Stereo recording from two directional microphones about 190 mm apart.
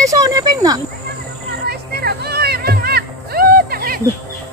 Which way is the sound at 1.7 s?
55° right (ahead or behind).